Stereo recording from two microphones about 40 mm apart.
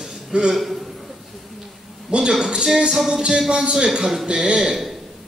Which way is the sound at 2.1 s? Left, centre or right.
Centre.